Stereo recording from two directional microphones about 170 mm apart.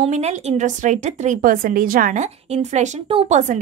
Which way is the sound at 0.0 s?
45° right (ahead or behind).